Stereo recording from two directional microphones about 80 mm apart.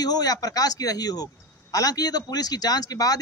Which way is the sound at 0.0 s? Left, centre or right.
Left.